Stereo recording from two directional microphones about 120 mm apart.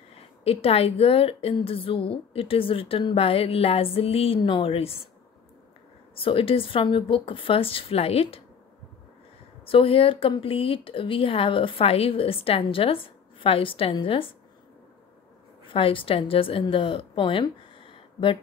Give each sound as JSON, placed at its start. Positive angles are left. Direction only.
{"t": 0.4, "sound": "a woman's voice", "side_deg": 55}
{"t": 6.1, "sound": "a woman's voice", "side_deg": 50}
{"t": 9.7, "sound": "a woman's voice", "side_deg": 50}
{"t": 15.6, "sound": "a woman's voice", "side_deg": 45}